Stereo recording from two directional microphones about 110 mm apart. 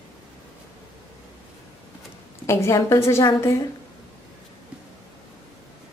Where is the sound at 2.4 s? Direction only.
25° left (ahead or behind).